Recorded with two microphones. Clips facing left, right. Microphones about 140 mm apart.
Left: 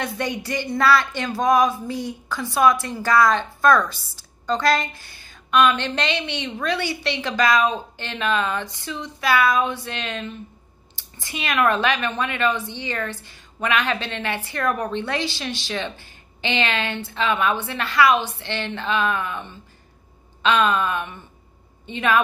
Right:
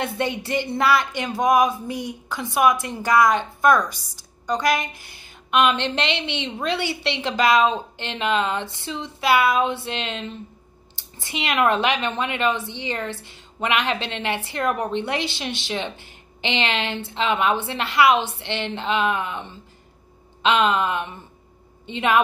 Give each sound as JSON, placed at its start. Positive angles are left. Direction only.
{"t": 0.0, "sound": "a woman's voice", "side_deg": -25}